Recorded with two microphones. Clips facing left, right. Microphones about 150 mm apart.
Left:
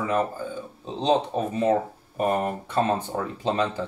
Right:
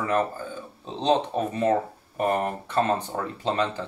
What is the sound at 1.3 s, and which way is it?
Speech, 5° left (ahead or behind).